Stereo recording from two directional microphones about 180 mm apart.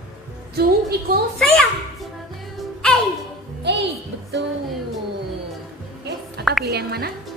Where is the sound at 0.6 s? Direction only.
60° right (ahead or behind).